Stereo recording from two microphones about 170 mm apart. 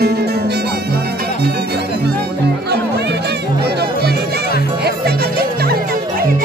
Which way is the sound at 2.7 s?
75° right (ahead or behind).